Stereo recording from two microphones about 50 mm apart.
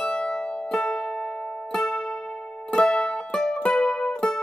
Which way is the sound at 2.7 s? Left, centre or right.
Centre.